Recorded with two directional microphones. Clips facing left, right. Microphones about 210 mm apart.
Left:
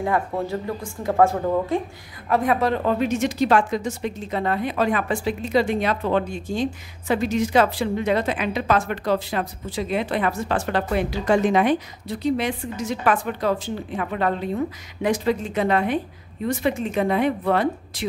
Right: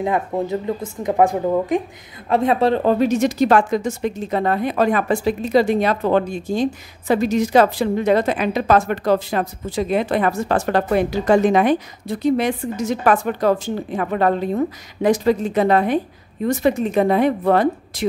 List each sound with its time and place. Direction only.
0.0 s speech: 20° right (ahead or behind)
2.2 s speech: 25° right (ahead or behind); by 18.0 s 40° right (ahead or behind)